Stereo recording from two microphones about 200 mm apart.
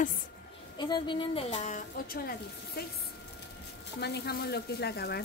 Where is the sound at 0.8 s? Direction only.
25° left (ahead or behind).